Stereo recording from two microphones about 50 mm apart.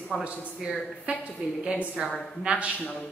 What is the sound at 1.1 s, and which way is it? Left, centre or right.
Speech, right.